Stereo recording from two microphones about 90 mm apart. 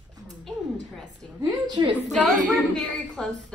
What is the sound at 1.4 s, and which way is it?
Speech, 45° right (ahead or behind).